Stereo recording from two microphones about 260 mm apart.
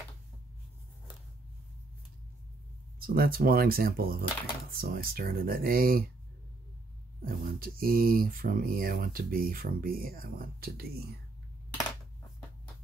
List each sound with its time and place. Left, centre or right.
3.0 s speech: right
7.2 s speech: right